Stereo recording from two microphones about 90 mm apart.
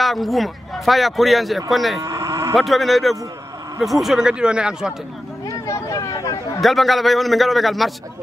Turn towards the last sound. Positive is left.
turn(degrees=0)  # may be behind; listen again after turning